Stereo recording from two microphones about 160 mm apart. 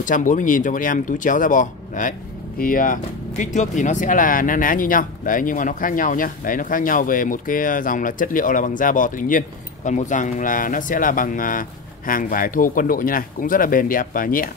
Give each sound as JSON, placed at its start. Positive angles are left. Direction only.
{"t": 0.0, "sound": "speech", "side_deg": 55}